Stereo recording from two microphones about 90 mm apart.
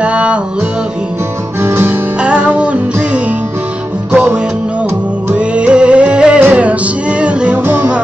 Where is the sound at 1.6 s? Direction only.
25° right (ahead or behind).